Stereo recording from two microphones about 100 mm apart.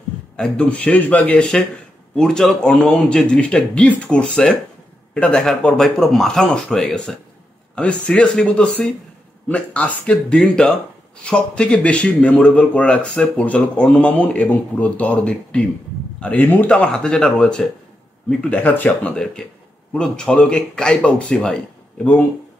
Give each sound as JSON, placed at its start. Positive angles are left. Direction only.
{"t": 0.4, "sound": "speech", "side_deg": 10}